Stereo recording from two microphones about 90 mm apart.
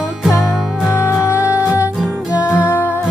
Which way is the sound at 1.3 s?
30° left (ahead or behind).